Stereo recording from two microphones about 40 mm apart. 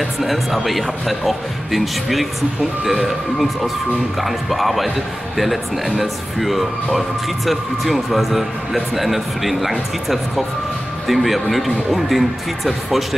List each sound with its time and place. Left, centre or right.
0.2 s speech: centre